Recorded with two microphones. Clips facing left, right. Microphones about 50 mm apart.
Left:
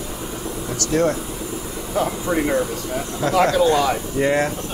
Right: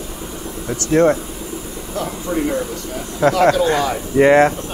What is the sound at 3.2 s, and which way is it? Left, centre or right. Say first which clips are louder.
Speech: right 3 dB; right.